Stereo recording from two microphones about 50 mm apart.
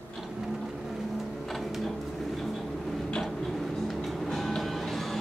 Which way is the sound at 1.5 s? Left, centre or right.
Centre.